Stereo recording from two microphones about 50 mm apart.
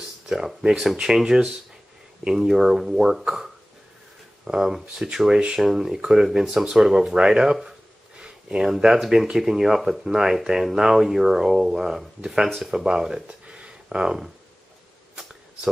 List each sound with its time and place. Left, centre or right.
0.5 s speech: centre
4.5 s speech: centre
8.2 s a sound: centre
8.7 s speech: centre